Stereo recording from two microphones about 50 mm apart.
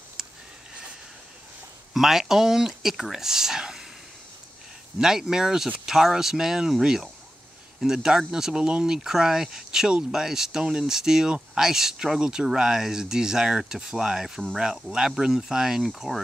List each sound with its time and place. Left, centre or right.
0.2 s a sound: centre
2.0 s speech: centre
5.0 s speech: centre